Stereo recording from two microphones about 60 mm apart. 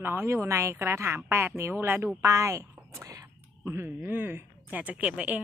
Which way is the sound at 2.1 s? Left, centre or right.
Right.